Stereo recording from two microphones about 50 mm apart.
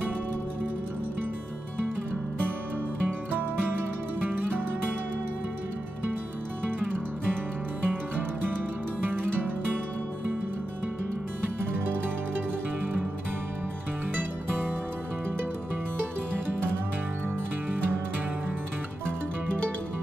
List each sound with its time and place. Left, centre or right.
4.2 s music: right
7.8 s music: right